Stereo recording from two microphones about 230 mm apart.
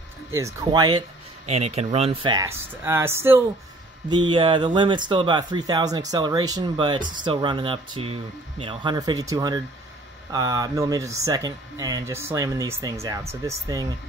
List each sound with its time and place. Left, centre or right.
0.4 s speech: centre